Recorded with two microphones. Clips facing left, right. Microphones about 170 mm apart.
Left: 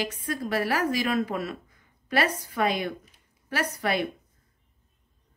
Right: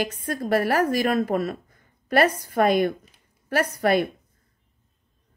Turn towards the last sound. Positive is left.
turn(degrees=-45)  # may be behind; listen again after turning